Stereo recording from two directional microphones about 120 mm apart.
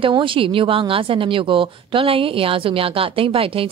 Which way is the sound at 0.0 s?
45° right (ahead or behind).